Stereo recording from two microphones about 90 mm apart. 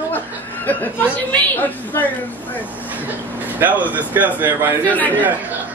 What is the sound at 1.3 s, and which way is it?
Speech, 20° left (ahead or behind).